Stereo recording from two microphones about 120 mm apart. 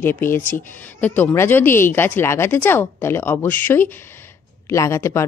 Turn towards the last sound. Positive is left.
turn(degrees=25)  # may be behind; listen again after turning